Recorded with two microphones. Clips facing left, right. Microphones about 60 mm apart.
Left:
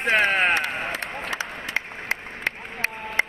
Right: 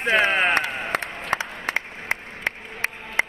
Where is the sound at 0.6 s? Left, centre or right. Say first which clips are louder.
Left 1 dB; left.